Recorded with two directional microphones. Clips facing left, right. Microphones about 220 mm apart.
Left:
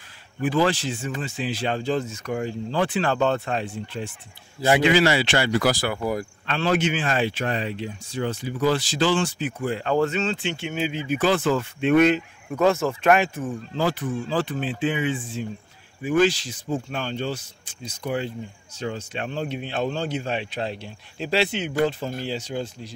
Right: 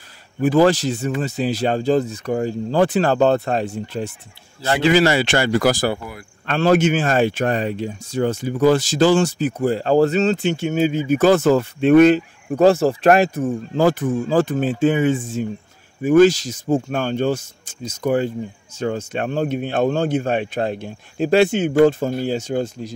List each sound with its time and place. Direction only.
0.4 s speech: 45° right (ahead or behind)